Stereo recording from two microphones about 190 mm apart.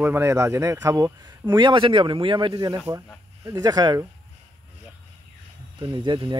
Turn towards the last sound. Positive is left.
turn(degrees=-25)  # may be behind; listen again after turning